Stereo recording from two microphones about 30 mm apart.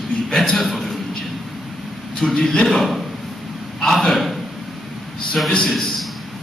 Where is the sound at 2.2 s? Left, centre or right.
Centre.